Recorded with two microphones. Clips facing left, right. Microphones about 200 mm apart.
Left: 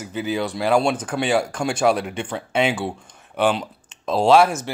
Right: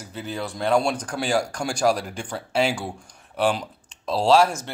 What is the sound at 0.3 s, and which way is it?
Speech, 85° left.